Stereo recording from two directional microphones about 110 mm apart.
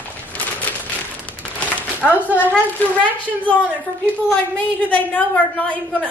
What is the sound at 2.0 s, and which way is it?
Speech, 15° right (ahead or behind).